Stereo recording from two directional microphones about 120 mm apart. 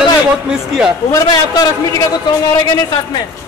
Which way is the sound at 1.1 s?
30° left (ahead or behind).